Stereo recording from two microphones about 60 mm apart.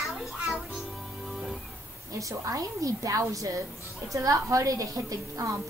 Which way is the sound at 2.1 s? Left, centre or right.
Right.